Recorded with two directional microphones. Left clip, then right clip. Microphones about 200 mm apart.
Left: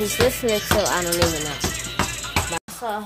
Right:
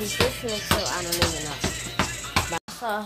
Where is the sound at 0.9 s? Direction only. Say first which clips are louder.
Left 6 dB; 35° left (ahead or behind).